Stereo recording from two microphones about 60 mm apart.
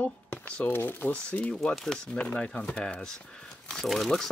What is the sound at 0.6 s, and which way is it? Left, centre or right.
Speech, left.